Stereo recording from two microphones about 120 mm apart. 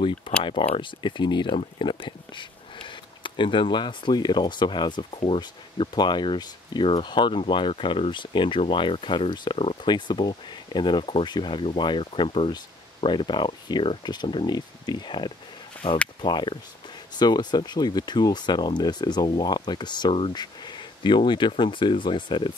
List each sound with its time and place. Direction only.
0.4 s speech: 45° left (ahead or behind)